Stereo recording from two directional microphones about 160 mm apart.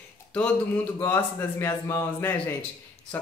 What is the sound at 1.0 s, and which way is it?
Speech, 15° left (ahead or behind).